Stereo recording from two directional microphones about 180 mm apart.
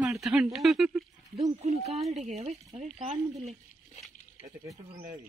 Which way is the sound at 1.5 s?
35° right (ahead or behind).